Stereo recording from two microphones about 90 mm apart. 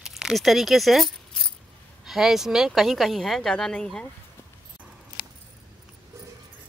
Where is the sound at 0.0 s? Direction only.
5° right (ahead or behind).